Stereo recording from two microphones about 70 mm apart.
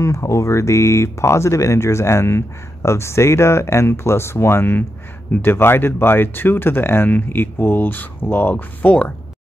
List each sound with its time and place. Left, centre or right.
0.0 s speech: left